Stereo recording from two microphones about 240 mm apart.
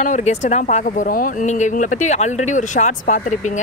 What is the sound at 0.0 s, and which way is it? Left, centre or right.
Speech, left.